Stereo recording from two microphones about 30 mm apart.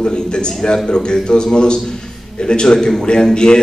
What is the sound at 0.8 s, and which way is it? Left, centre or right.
A man's voice, left.